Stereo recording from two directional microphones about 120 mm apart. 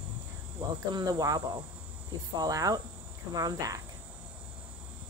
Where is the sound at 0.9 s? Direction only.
35° right (ahead or behind).